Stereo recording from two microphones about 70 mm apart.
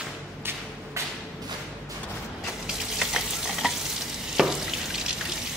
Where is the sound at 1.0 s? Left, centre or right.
Right.